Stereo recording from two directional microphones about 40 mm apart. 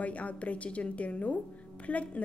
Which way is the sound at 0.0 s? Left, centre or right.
Left.